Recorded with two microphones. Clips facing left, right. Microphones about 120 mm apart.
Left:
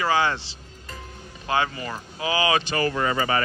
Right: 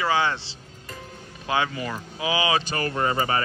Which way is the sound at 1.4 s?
10° right (ahead or behind).